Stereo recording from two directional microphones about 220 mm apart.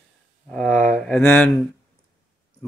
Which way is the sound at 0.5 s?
Centre (ahead or behind).